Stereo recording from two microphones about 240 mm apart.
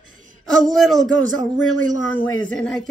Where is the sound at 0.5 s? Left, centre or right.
Centre.